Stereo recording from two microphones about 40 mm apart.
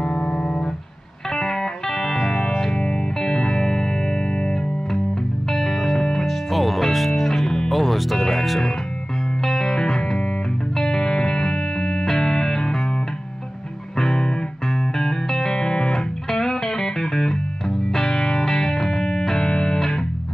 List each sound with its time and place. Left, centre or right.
0.0 s music: centre
5.5 s music: centre
6.5 s music: centre
7.7 s music: centre
13.9 s music: centre